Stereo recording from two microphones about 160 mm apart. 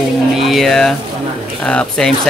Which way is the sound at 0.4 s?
Centre (ahead or behind).